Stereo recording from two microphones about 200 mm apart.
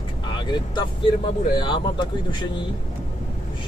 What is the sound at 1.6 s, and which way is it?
Speech, 20° left (ahead or behind).